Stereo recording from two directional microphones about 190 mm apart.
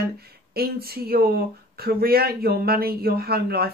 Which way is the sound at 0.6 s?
55° right (ahead or behind).